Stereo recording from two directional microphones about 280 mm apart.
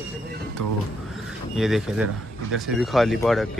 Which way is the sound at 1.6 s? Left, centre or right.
Centre.